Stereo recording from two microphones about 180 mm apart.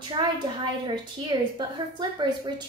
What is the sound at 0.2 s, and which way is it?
A woman's voice, 25° right (ahead or behind).